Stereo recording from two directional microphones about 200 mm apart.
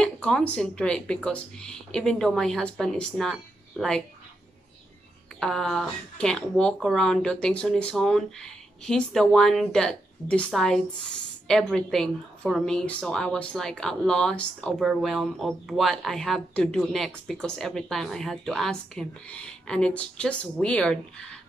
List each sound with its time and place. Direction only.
0.0 s a woman's voice: 5° left (ahead or behind)
5.4 s a woman's voice: centre (ahead or behind)